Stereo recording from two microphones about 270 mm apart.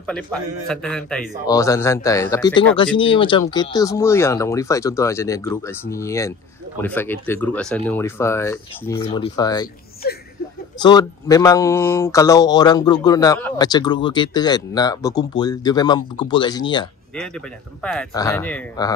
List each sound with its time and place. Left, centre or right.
0.0 s a man's voice: centre
10.8 s speech: centre
17.1 s speech: centre